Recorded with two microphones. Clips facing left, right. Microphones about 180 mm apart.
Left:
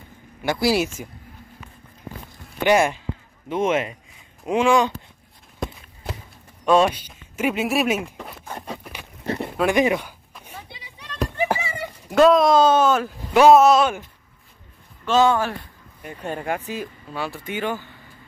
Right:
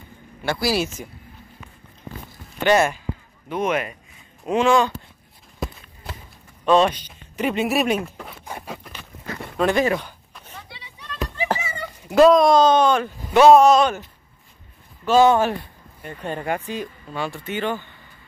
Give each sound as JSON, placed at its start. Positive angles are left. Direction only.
{"t": 0.4, "sound": "speech", "side_deg": 20}
{"t": 2.6, "sound": "speech", "side_deg": 15}
{"t": 3.4, "sound": "speech", "side_deg": 25}
{"t": 4.5, "sound": "speech", "side_deg": 10}
{"t": 6.6, "sound": "speech", "side_deg": 10}
{"t": 8.5, "sound": "a sound", "side_deg": 0}
{"t": 9.2, "sound": "a sound", "side_deg": 25}
{"t": 9.6, "sound": "a sound", "side_deg": 15}
{"t": 12.1, "sound": "speech", "side_deg": 0}
{"t": 15.0, "sound": "speech", "side_deg": -10}
{"t": 15.3, "sound": "speech", "side_deg": -25}
{"t": 16.0, "sound": "speech", "side_deg": 10}